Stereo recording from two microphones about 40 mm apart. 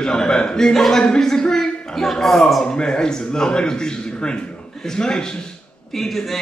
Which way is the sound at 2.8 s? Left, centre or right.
Centre.